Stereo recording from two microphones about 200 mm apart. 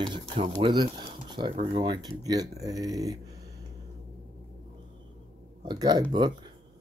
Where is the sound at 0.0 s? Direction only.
25° right (ahead or behind).